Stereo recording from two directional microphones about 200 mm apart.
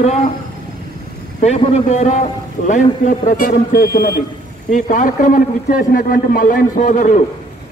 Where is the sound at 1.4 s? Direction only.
35° left (ahead or behind).